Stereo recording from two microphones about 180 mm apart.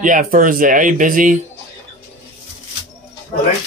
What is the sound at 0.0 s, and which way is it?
Speech, 50° right (ahead or behind).